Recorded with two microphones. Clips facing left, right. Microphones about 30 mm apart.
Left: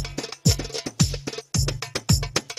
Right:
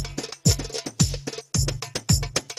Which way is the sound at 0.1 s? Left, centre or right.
Centre.